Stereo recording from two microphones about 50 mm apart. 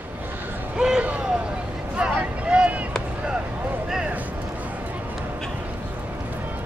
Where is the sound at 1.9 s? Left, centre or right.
Right.